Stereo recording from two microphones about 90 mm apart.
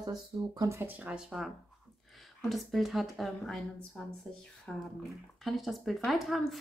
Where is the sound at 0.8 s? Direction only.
15° right (ahead or behind).